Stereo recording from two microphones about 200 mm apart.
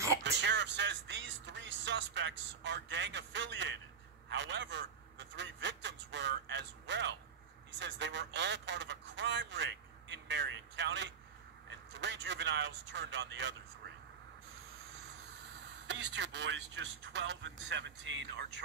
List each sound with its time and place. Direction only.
0.2 s a man's voice: 60° right (ahead or behind)
15.9 s a man's voice: 65° right (ahead or behind)